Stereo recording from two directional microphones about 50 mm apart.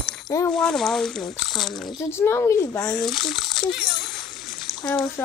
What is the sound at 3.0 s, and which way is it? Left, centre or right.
A child's voice, centre.